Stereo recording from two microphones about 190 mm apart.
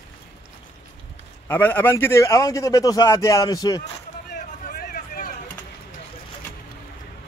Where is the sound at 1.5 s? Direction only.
10° left (ahead or behind).